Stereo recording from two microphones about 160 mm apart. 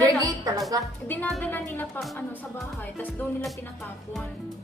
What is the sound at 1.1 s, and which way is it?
Speech, 10° left (ahead or behind).